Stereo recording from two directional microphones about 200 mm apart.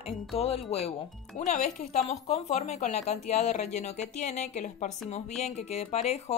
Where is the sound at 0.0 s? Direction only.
30° left (ahead or behind).